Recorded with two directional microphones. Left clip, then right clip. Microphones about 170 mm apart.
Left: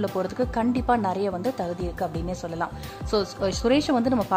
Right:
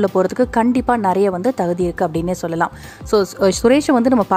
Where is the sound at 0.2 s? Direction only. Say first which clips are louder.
Right 10 dB; 40° right (ahead or behind).